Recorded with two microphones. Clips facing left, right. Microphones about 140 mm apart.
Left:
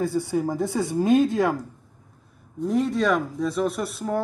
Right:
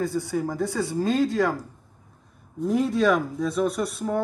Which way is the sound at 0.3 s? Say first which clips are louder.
Left 2 dB; 15° left (ahead or behind).